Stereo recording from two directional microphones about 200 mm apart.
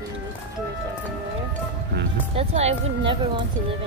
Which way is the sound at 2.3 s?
30° right (ahead or behind).